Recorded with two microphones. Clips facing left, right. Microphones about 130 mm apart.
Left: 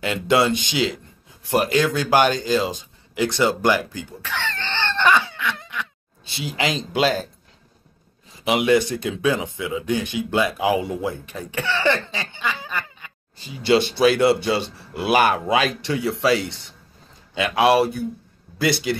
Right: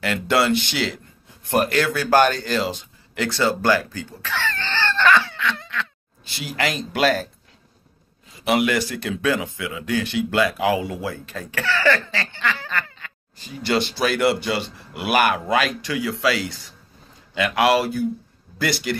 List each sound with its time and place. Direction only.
0.0 s speech: 20° left (ahead or behind)
8.6 s speech: 25° left (ahead or behind)
13.9 s speech: 25° left (ahead or behind)